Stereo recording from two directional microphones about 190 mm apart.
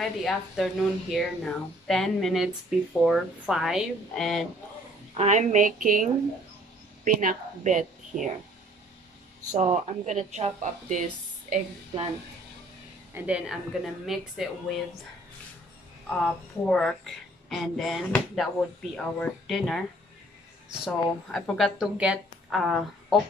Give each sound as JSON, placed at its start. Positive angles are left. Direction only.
{"t": 0.0, "sound": "speech", "side_deg": 0}
{"t": 5.1, "sound": "speech", "side_deg": -35}
{"t": 7.1, "sound": "a woman's voice", "side_deg": -45}
{"t": 9.5, "sound": "speech", "side_deg": -35}
{"t": 13.1, "sound": "a woman's voice", "side_deg": -5}
{"t": 16.1, "sound": "speech", "side_deg": 5}
{"t": 20.8, "sound": "speech", "side_deg": 0}